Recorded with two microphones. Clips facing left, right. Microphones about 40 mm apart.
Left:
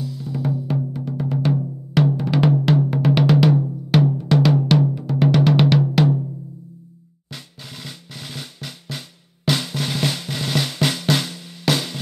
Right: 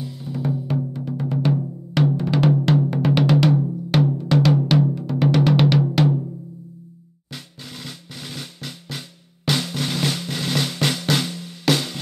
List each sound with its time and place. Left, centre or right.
0.0 s drum: right
0.7 s drum: centre
7.8 s drum: centre